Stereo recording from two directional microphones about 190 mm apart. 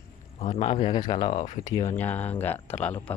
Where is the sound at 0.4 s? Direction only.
30° left (ahead or behind).